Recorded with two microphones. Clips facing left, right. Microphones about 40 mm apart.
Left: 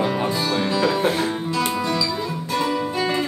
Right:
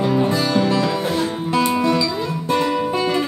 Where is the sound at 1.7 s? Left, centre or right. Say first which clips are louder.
Right 4 dB; right.